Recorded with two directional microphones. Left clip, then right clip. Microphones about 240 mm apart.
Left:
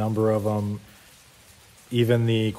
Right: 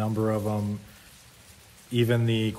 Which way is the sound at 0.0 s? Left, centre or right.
Left.